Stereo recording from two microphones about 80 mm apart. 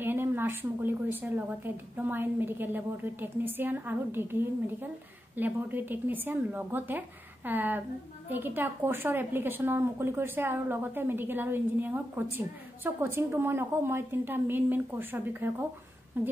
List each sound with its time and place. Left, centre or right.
0.0 s a woman's voice: right